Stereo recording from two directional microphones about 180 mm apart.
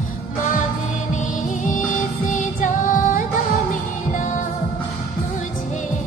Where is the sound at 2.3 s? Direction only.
45° left (ahead or behind).